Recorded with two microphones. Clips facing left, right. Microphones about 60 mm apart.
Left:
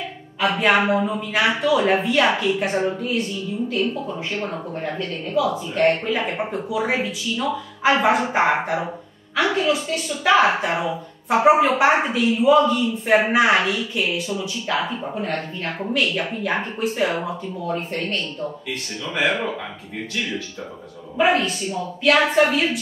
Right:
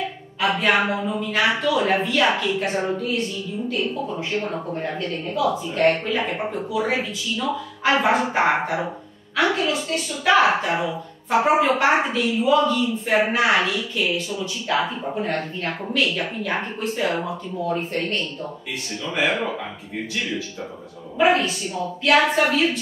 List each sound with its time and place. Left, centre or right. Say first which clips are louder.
0.4 s speech: left 1 dB; centre
0.7 s speech: left 5 dB; centre
4.9 s a woman's voice: left 2 dB; centre
10.4 s speech: even; centre
15.1 s a woman's voice: right 2 dB; centre
15.9 s a woman's voice: left 1 dB; centre
21.2 s a woman's voice: even; centre